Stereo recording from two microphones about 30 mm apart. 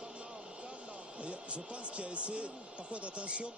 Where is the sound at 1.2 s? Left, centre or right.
Right.